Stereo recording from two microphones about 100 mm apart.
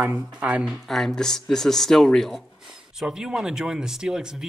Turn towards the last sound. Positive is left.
turn(degrees=-5)  # may be behind; listen again after turning